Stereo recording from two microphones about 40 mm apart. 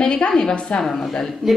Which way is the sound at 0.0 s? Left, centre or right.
Left.